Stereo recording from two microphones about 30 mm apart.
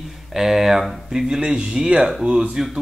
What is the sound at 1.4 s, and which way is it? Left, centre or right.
Speech, right.